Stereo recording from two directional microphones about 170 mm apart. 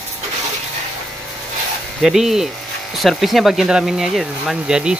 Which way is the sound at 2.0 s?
Centre (ahead or behind).